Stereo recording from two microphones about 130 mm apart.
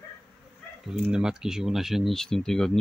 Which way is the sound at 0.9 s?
5° right (ahead or behind).